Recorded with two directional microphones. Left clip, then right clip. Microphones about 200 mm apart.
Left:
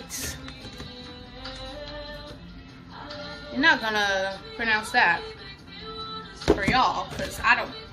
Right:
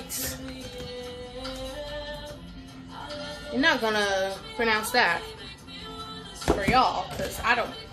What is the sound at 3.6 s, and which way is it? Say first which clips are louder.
A woman's voice: left 2 dB; 20° right (ahead or behind).